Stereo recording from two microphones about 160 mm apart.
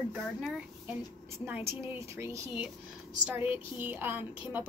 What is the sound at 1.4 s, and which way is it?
A woman's voice, 15° right (ahead or behind).